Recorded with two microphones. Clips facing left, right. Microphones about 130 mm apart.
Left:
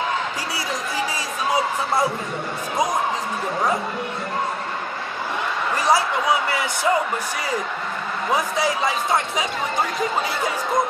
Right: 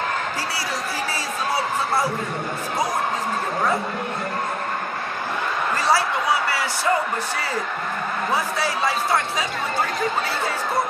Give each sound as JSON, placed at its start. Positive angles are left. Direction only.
{"t": 6.5, "sound": "speech", "side_deg": 20}
{"t": 8.3, "sound": "speech", "side_deg": 15}